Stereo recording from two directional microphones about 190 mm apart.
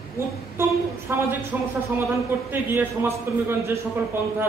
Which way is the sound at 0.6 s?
10° right (ahead or behind).